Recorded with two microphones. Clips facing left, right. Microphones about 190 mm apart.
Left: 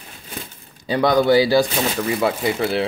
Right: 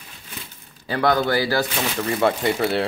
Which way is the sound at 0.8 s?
15° left (ahead or behind).